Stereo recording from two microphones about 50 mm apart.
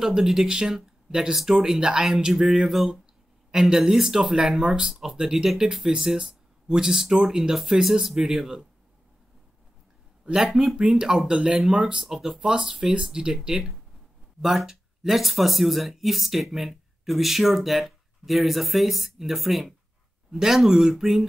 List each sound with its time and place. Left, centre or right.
0.0 s speech: centre
10.3 s speech: centre